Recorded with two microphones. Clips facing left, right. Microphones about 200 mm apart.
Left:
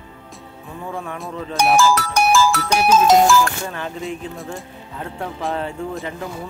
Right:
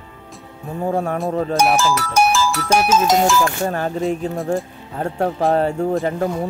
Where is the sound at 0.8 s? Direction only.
45° right (ahead or behind).